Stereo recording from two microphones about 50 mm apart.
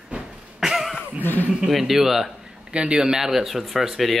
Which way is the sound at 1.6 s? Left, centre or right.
Centre.